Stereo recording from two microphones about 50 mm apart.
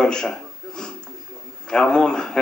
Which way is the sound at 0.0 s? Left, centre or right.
Centre.